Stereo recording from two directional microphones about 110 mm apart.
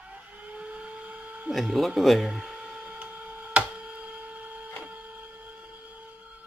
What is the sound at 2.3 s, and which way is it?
Printer, 10° right (ahead or behind).